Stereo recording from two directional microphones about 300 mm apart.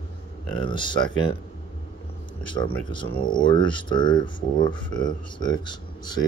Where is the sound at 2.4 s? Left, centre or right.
Centre.